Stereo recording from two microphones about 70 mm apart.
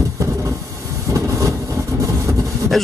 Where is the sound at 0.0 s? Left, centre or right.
Right.